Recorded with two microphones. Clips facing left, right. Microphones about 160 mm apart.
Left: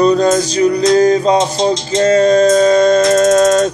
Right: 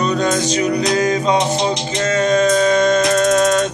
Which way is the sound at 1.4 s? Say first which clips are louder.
Left 4 dB; 15° right (ahead or behind).